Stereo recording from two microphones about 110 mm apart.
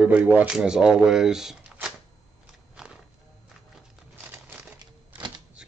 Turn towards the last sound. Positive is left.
turn(degrees=-15)  # may be behind; listen again after turning